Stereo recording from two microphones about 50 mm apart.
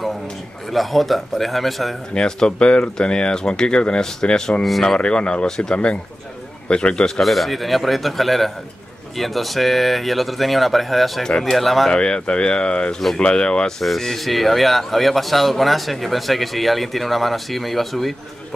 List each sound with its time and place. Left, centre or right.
0.7 s speech: centre
2.1 s speech: centre
4.6 s speech: centre
4.9 s speech: centre
7.2 s speech: centre
11.2 s speech: centre
11.5 s speech: centre
11.9 s speech: centre